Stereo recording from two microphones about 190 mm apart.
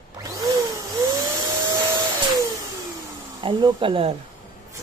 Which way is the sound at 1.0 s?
20° right (ahead or behind).